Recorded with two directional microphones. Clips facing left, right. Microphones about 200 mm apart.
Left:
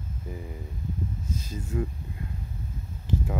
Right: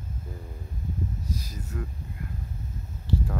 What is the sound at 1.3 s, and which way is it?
Speech, 25° left (ahead or behind).